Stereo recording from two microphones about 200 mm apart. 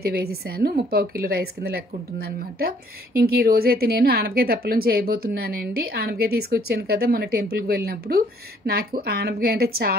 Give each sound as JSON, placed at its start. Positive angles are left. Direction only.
{"t": 0.0, "sound": "a woman's voice", "side_deg": -50}